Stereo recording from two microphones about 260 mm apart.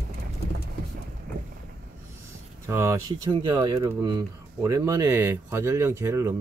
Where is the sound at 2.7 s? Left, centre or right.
Centre.